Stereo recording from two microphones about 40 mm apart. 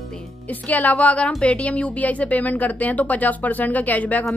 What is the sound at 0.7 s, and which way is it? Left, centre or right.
A woman's voice, left.